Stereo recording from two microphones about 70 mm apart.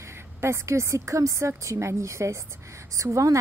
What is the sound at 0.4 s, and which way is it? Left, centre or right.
Speech, right.